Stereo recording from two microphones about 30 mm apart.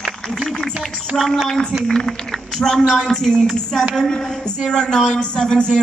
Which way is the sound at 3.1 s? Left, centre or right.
Centre.